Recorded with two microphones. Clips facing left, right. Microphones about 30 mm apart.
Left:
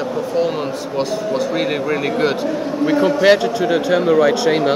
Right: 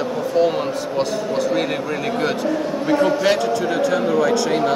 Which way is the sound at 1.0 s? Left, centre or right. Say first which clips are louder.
Left 2 dB; centre.